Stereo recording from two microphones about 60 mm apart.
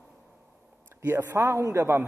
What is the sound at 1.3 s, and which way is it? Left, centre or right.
Speech, right.